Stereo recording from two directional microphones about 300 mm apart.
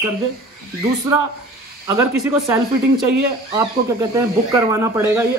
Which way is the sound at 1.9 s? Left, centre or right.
Centre.